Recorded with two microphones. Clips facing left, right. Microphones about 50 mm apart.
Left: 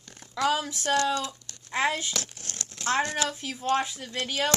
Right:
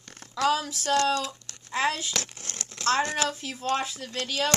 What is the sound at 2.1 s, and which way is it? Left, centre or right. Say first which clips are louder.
Crumpling: right 2 dB; right.